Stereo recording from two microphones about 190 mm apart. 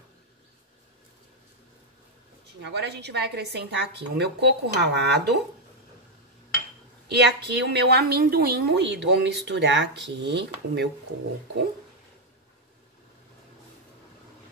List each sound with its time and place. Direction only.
2.6 s a woman's voice: 60° right (ahead or behind)
7.1 s a woman's voice: 60° right (ahead or behind)